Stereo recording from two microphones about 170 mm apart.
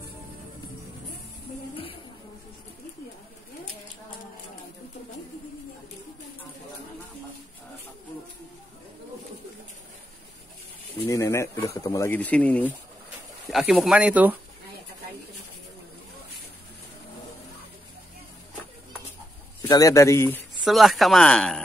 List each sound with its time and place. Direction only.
11.0 s speech: 15° left (ahead or behind)
13.5 s speech: centre (ahead or behind)
19.7 s speech: 20° left (ahead or behind)
20.6 s speech: centre (ahead or behind)